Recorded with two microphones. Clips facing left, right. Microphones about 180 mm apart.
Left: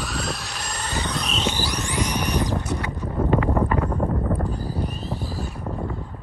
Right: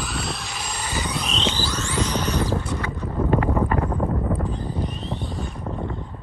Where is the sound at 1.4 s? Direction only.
15° left (ahead or behind).